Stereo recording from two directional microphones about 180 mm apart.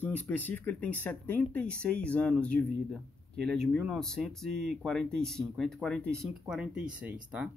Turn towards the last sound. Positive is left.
turn(degrees=-5)  # may be behind; listen again after turning